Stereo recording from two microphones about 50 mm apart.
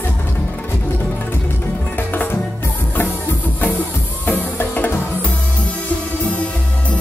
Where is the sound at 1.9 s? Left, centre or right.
Left.